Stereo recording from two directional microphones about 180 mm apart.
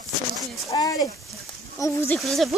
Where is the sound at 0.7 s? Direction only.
20° left (ahead or behind).